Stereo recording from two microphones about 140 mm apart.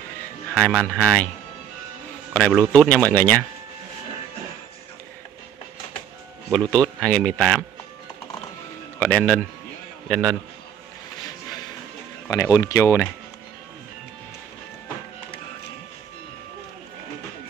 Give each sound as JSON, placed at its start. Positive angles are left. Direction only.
{"t": 0.6, "sound": "speech", "side_deg": 5}
{"t": 2.3, "sound": "speech", "side_deg": 10}
{"t": 6.5, "sound": "speech", "side_deg": 5}
{"t": 9.0, "sound": "speech", "side_deg": 10}
{"t": 12.3, "sound": "speech", "side_deg": 25}